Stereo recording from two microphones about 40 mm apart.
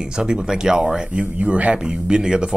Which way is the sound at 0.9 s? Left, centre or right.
Right.